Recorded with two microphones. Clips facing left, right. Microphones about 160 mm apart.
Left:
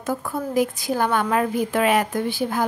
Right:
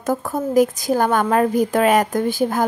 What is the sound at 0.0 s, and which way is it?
A woman's voice, 45° right (ahead or behind).